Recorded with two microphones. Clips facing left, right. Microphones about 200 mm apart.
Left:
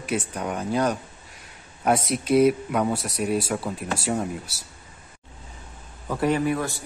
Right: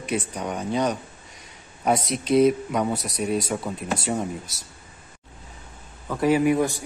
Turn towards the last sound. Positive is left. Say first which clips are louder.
# right 4 dB
turn(degrees=-15)  # may be behind; listen again after turning